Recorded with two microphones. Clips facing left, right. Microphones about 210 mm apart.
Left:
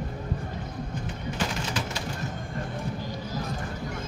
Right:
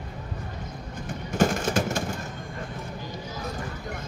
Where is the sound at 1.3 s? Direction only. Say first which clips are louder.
Right 9 dB; 50° right (ahead or behind).